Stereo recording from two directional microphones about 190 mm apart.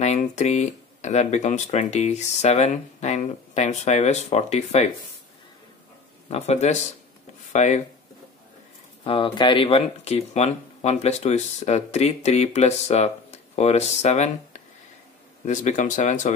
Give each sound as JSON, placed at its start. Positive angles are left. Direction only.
{"t": 0.0, "sound": "speech", "side_deg": 35}
{"t": 6.3, "sound": "speech", "side_deg": 35}
{"t": 9.0, "sound": "speech", "side_deg": 25}